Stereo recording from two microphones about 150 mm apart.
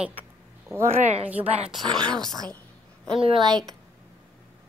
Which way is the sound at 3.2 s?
35° right (ahead or behind).